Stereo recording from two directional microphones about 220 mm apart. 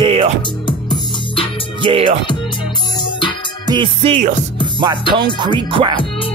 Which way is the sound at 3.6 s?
20° right (ahead or behind).